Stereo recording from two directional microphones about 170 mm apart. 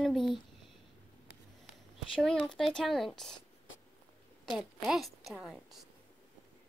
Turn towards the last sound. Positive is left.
turn(degrees=-5)  # may be behind; listen again after turning